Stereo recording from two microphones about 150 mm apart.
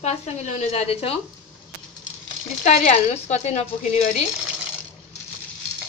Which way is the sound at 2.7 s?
45° left (ahead or behind).